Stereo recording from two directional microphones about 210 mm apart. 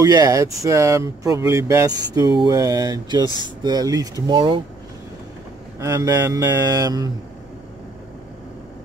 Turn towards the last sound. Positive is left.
turn(degrees=-15)  # may be behind; listen again after turning